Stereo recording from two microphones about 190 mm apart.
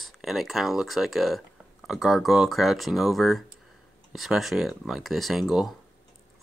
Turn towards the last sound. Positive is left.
turn(degrees=0)  # may be behind; listen again after turning